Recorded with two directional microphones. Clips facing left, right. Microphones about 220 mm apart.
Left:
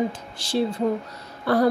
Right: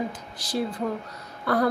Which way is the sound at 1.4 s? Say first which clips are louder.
Left 4 dB; 30° left (ahead or behind).